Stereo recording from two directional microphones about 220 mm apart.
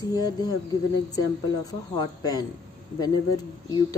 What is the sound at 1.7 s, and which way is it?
Speech, 15° left (ahead or behind).